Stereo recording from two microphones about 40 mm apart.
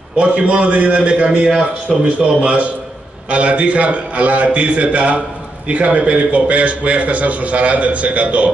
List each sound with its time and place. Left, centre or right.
0.2 s a man's voice: right